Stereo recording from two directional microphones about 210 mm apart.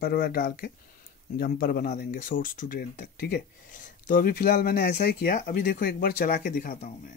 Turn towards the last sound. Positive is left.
turn(degrees=40)  # may be behind; listen again after turning